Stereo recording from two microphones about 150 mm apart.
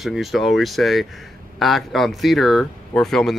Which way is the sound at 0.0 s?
Centre (ahead or behind).